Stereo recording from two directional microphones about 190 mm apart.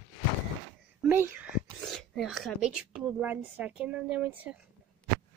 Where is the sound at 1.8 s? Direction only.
Centre (ahead or behind).